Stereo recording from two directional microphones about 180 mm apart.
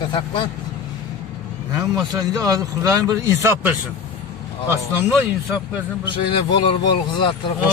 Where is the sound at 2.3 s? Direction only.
20° right (ahead or behind).